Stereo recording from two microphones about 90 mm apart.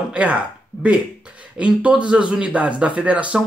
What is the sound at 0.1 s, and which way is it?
Speech, 15° right (ahead or behind).